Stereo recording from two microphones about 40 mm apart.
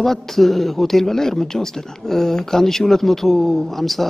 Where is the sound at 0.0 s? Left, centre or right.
Centre.